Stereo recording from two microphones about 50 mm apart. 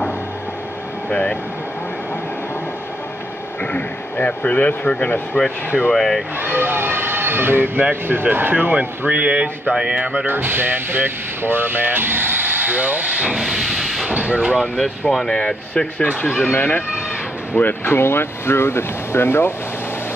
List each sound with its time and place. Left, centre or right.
1.1 s speech: centre
3.7 s speech: left
5.9 s speech: centre
6.4 s speech: right
8.7 s speech: right
10.2 s speech: right
13.4 s steam: centre
14.1 s speech: right
14.6 s speech: centre
15.3 s speech: centre
17.6 s speech: left